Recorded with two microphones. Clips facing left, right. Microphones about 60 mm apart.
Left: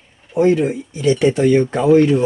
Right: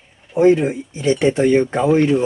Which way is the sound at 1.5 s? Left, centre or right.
Centre.